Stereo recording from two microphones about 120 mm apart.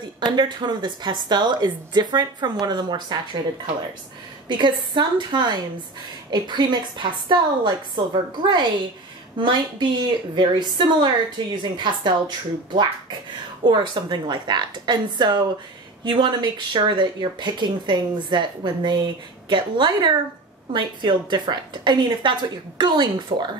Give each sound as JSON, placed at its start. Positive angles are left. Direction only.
{"t": 0.2, "sound": "a woman's voice", "side_deg": -40}
{"t": 4.5, "sound": "a woman's voice", "side_deg": -40}